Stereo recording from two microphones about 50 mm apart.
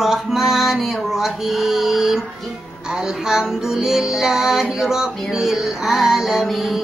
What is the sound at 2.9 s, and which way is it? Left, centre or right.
Music, centre.